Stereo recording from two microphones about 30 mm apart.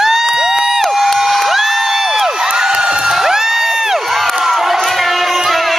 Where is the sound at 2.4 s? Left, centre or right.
Right.